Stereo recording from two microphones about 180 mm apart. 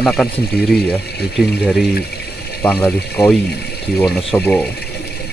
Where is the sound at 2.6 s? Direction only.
10° left (ahead or behind).